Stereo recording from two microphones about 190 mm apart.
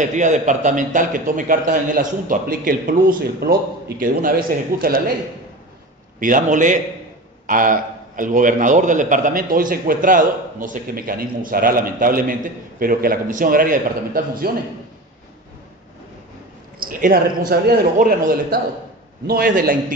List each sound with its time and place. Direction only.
0.0 s a man's voice: 40° right (ahead or behind)
6.1 s a man's voice: 45° right (ahead or behind)
16.8 s a man's voice: 50° right (ahead or behind)